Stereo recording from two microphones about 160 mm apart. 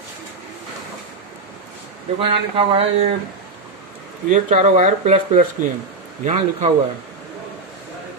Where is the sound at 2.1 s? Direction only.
35° right (ahead or behind).